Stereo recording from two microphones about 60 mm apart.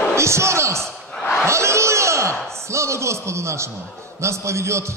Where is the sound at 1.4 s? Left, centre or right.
Right.